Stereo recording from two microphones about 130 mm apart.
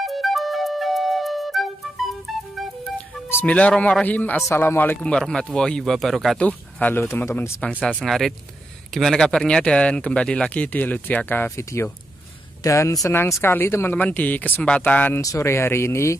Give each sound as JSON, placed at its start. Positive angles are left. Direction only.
{"t": 0.0, "sound": "music", "side_deg": 0}
{"t": 3.3, "sound": "speech", "side_deg": 15}